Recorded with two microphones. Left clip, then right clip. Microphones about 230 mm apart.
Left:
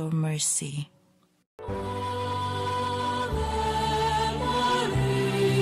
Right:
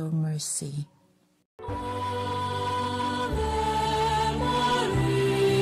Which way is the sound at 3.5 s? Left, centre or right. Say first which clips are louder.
Even; centre.